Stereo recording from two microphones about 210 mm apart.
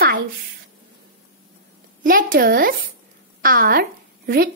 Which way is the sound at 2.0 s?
40° right (ahead or behind).